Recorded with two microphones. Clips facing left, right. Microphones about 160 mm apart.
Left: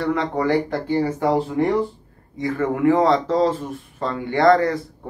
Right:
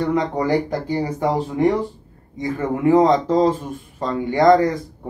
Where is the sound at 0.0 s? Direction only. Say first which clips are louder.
Right 1 dB; 15° right (ahead or behind).